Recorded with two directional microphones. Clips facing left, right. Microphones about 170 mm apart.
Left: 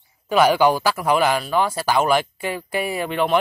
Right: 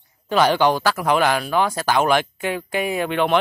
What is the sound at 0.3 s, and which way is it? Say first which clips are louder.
Speech: left 1 dB; 5° left (ahead or behind).